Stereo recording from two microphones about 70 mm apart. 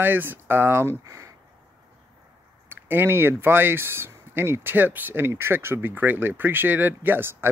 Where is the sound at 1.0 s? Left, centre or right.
Right.